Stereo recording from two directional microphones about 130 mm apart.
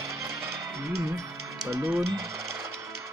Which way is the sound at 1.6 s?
20° right (ahead or behind).